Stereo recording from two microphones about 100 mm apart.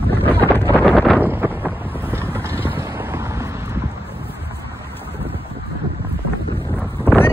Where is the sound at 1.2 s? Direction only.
20° right (ahead or behind).